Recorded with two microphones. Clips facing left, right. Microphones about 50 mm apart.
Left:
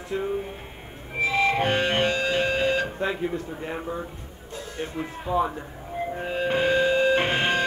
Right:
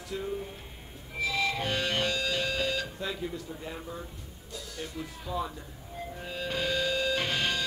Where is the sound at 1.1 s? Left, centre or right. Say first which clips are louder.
Left 8 dB; left.